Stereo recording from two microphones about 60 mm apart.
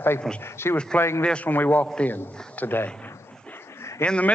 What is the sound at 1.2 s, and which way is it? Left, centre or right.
Speech, centre.